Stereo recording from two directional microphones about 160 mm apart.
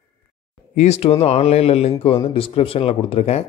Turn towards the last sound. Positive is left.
turn(degrees=40)  # may be behind; listen again after turning